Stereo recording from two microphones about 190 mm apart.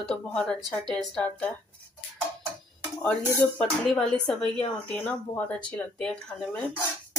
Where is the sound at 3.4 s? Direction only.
5° left (ahead or behind).